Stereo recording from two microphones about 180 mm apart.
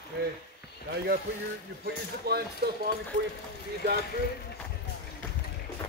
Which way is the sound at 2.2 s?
60° right (ahead or behind).